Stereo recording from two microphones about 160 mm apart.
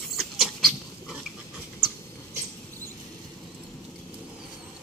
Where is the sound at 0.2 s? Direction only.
Centre (ahead or behind).